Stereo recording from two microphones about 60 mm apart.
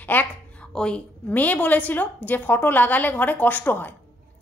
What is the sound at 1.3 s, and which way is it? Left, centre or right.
A woman's voice, left.